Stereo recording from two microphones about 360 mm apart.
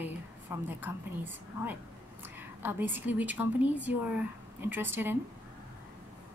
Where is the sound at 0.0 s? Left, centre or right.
Centre.